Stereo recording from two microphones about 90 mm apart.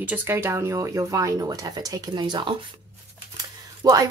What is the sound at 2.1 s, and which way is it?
Speech, 55° right (ahead or behind).